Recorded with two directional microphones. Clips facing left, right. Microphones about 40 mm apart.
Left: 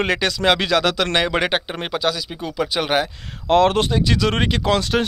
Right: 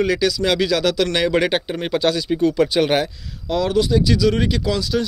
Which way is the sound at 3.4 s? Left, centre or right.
Left.